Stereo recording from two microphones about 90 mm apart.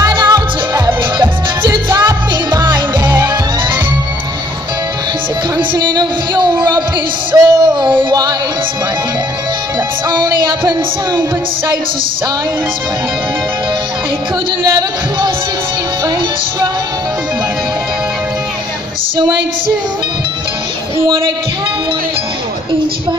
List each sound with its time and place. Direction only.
0.1 s music: 55° right (ahead or behind)
5.7 s music: 50° right (ahead or behind)
10.0 s music: 50° right (ahead or behind)